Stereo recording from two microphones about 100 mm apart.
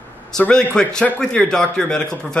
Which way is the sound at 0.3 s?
5° left (ahead or behind).